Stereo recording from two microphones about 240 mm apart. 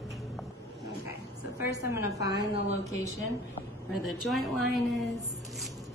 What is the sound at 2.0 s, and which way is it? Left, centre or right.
Speech, centre.